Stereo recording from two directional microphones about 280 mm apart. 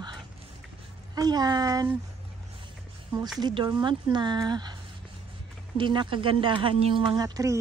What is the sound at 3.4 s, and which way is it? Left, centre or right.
Speech, centre.